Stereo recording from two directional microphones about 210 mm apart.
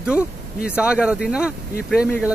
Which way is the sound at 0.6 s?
5° right (ahead or behind).